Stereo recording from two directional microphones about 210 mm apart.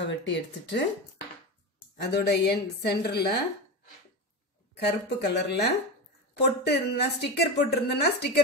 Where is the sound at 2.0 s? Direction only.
50° left (ahead or behind).